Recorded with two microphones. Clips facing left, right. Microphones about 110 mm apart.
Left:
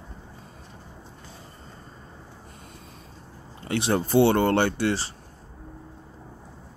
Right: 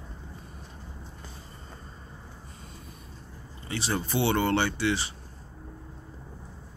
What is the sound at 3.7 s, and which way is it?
Speech, 55° left (ahead or behind).